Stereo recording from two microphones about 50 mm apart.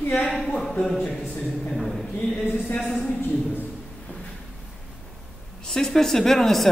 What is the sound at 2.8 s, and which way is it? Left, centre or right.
Speech, centre.